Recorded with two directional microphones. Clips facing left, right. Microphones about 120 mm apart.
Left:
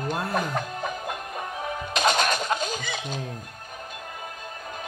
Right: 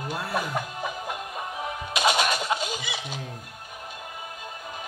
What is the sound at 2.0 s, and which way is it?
Music, 5° right (ahead or behind).